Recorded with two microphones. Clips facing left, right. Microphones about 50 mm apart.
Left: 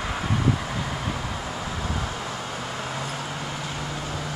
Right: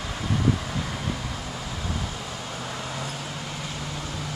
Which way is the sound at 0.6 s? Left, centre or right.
Centre.